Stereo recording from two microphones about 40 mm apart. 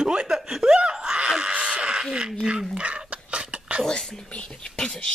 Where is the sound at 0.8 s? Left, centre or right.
Right.